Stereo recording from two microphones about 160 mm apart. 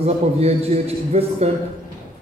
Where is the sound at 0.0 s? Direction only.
40° right (ahead or behind).